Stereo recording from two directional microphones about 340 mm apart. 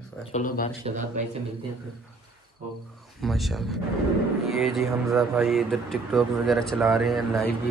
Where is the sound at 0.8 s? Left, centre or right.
Right.